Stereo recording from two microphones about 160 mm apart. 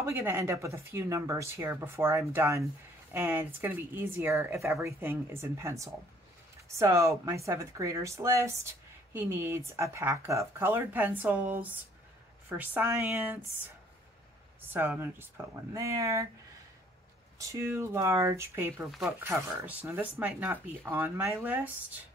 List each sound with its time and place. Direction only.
0.0 s speech: 15° right (ahead or behind)
14.6 s speech: 15° right (ahead or behind)
17.4 s speech: 20° right (ahead or behind)
18.9 s speech: centre (ahead or behind)
19.1 s speech: 15° right (ahead or behind)